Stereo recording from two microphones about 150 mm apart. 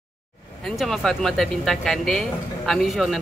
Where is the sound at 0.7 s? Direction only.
Centre (ahead or behind).